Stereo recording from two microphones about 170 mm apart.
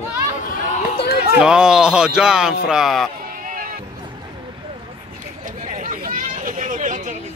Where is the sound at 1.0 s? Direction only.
65° left (ahead or behind).